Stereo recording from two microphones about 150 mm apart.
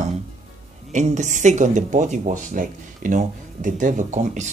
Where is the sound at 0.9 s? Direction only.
55° right (ahead or behind).